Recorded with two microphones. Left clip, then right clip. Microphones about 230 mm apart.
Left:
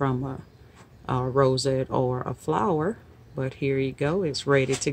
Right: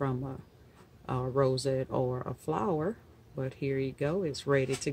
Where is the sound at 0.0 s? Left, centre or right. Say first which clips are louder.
Left 7 dB; centre.